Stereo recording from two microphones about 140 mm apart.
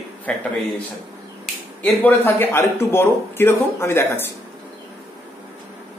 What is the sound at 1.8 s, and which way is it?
A man's voice, 15° left (ahead or behind).